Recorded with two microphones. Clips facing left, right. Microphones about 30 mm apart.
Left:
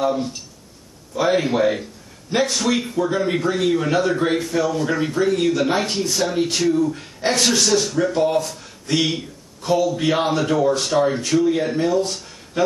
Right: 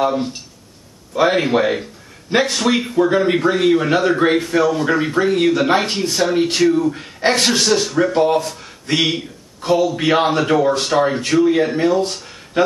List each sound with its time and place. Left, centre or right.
0.0 s speech: right